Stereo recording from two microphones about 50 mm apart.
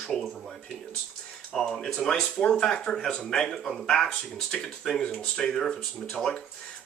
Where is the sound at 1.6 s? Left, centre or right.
Centre.